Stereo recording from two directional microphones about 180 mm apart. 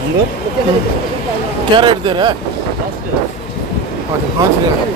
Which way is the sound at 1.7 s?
25° right (ahead or behind).